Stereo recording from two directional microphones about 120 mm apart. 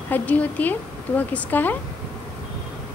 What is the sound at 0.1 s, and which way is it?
Speech, 15° left (ahead or behind).